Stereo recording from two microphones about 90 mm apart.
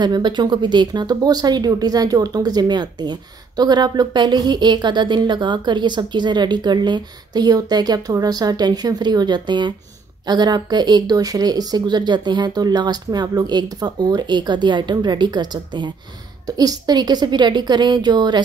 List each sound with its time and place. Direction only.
0.0 s speech: 55° right (ahead or behind)